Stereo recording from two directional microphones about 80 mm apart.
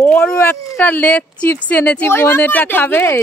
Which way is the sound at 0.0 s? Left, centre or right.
Left.